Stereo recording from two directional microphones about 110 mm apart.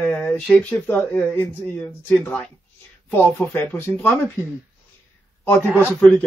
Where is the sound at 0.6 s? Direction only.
15° left (ahead or behind).